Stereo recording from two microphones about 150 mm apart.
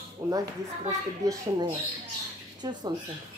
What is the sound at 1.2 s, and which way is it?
Speech, 25° right (ahead or behind).